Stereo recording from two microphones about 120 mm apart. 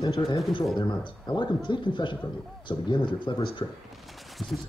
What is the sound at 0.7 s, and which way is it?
A man's voice, 40° left (ahead or behind).